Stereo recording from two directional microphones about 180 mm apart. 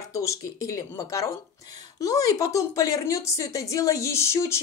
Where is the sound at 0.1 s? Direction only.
15° left (ahead or behind).